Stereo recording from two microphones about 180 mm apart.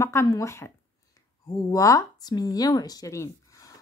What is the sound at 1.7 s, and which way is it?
Speech, 20° left (ahead or behind).